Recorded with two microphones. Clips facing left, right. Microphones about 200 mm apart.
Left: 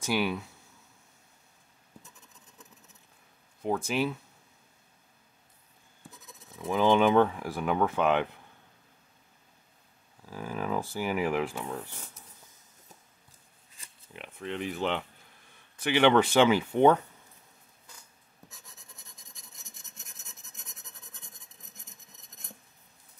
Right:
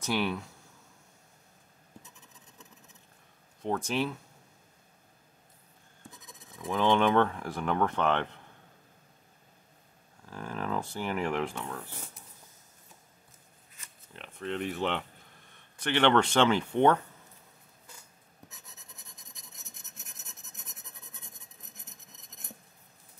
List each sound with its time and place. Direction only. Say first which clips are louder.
0.0 s speech: left 1 dB; 5° left (ahead or behind)
3.6 s speech: left 2 dB; 5° left (ahead or behind)
6.0 s speech: even; 5° left (ahead or behind)
10.2 s speech: left 2 dB; 5° left (ahead or behind)
13.8 s a sound: left 1 dB; 30° left (ahead or behind)
14.1 s speech: right 1 dB; centre (ahead or behind)
19.5 s rub: right 1 dB; centre (ahead or behind)